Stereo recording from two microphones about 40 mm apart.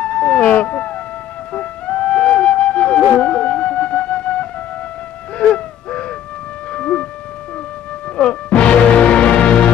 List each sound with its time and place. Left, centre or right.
0.0 s emergency vehicle: left
1.5 s music: left
5.4 s wheeze: left
6.7 s music: left
8.2 s music: left